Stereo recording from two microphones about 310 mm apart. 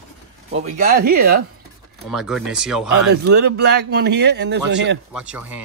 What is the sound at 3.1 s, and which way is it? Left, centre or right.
A man's voice, right.